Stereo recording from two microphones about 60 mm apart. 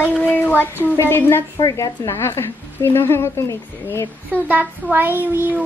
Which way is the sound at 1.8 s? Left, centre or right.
Left.